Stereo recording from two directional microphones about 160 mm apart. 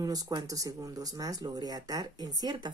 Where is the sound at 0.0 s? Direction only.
25° right (ahead or behind).